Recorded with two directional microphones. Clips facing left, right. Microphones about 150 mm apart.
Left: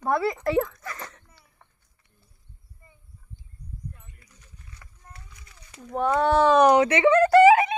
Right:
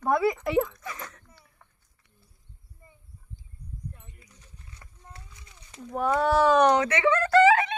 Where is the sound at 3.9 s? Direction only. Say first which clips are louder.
Right 1 dB; 25° right (ahead or behind).